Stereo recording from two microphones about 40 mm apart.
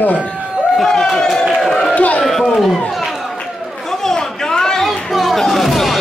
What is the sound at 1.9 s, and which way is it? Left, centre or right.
Speech, left.